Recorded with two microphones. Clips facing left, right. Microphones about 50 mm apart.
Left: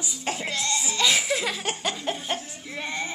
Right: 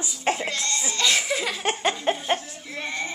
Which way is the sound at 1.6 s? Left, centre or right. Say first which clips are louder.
Right 5 dB; right.